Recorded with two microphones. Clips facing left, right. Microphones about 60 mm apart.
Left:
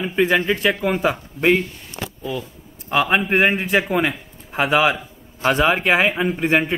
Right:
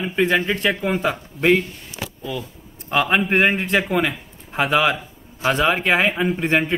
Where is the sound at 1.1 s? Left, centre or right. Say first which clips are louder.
Even; centre.